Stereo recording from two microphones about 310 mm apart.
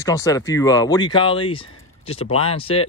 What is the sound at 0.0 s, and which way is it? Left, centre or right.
Speech, centre.